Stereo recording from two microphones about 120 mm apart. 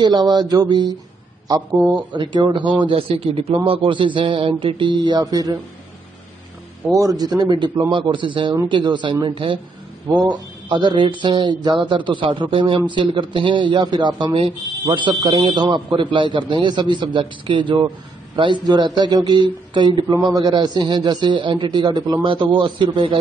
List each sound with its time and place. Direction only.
0.0 s speech: 35° right (ahead or behind)
2.1 s speech: 40° right (ahead or behind)
2.8 s a man's voice: 50° right (ahead or behind); by 5.6 s 30° right (ahead or behind)
6.9 s a man's voice: 30° right (ahead or behind); by 9.6 s 45° right (ahead or behind)
10.0 s a man's voice: 35° right (ahead or behind)